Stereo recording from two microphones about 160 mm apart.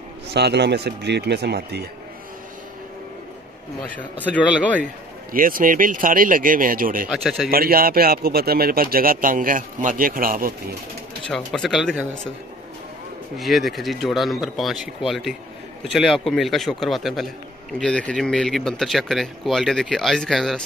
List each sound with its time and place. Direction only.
0.3 s speech: 90° right
4.4 s a man's voice: 10° right (ahead or behind)
5.3 s a man's voice: 60° right (ahead or behind)
7.1 s speech: centre (ahead or behind)
7.5 s a man's voice: 65° right (ahead or behind)
11.2 s speech: 5° left (ahead or behind)
13.4 s speech: centre (ahead or behind)